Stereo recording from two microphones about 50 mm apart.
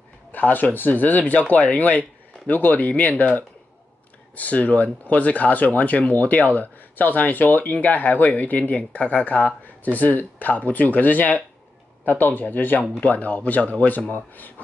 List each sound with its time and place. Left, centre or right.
0.3 s speech: left